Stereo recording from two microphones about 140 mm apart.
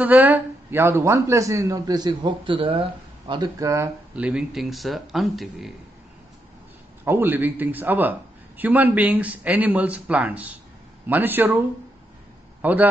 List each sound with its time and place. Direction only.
0.0 s a man's voice: 10° right (ahead or behind)
4.1 s speech: 5° right (ahead or behind)
7.1 s a man's voice: 15° right (ahead or behind)
12.6 s a man's voice: 10° right (ahead or behind)